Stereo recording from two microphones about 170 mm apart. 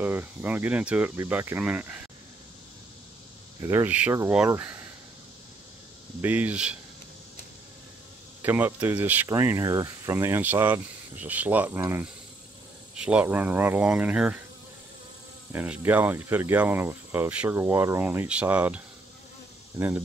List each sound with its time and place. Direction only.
0.0 s speech: 10° right (ahead or behind)
3.6 s speech: 10° right (ahead or behind)
6.2 s speech: 10° right (ahead or behind)
8.4 s speech: 10° right (ahead or behind)
15.5 s speech: 10° right (ahead or behind)